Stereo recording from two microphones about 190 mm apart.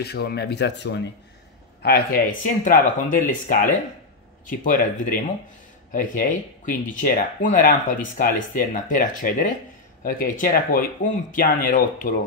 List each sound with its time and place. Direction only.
0.0 s speech: 60° left (ahead or behind)
1.8 s speech: 50° left (ahead or behind)
4.5 s speech: 45° left (ahead or behind)